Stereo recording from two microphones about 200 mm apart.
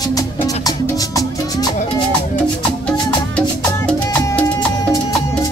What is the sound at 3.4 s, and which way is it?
Music, 5° left (ahead or behind).